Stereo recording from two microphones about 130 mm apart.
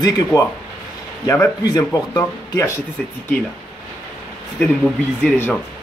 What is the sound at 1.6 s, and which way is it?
Speech, 30° left (ahead or behind).